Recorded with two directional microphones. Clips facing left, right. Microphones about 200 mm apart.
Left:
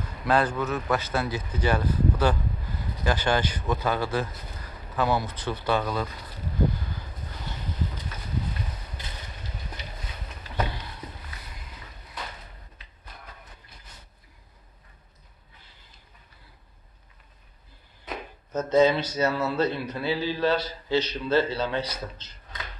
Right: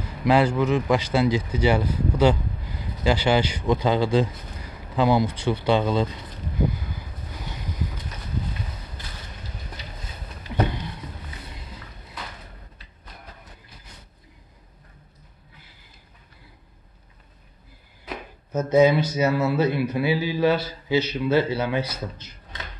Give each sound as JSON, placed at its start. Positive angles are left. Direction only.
{"t": 0.2, "sound": "speech", "side_deg": -10}
{"t": 5.8, "sound": "speech", "side_deg": -25}
{"t": 18.0, "sound": "speech", "side_deg": -10}